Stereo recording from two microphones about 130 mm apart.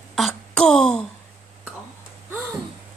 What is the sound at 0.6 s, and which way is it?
Speech, 5° left (ahead or behind).